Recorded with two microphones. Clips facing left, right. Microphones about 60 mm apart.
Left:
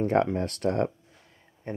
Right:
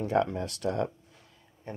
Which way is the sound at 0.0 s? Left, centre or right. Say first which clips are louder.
Left 3 dB; left.